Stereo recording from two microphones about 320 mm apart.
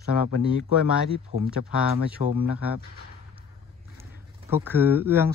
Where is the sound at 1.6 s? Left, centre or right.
Left.